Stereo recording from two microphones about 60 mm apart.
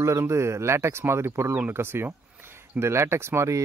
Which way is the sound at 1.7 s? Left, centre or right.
Right.